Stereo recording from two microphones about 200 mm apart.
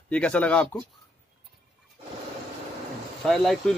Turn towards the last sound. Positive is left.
turn(degrees=0)  # may be behind; listen again after turning